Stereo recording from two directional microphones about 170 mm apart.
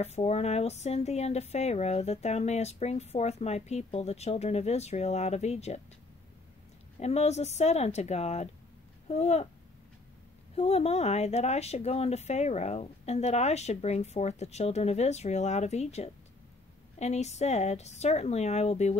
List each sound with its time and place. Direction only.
0.0 s speech: 40° left (ahead or behind)
7.0 s speech: 40° left (ahead or behind)
10.5 s speech: 35° left (ahead or behind)